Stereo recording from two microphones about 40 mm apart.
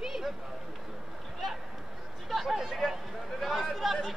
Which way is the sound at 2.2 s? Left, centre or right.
Centre.